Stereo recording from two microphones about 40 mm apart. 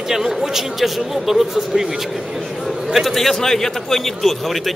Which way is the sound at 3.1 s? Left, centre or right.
Centre.